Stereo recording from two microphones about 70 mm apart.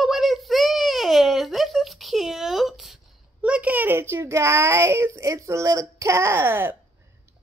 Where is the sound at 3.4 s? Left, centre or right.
Centre.